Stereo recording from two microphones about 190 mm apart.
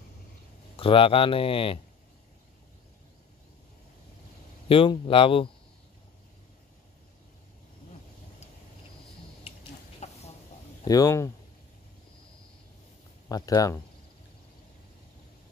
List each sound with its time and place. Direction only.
0.7 s speech: 30° left (ahead or behind)
4.6 s speech: 30° left (ahead or behind)
9.9 s chicken: 35° left (ahead or behind)
10.9 s speech: 20° left (ahead or behind)
13.3 s speech: 20° left (ahead or behind)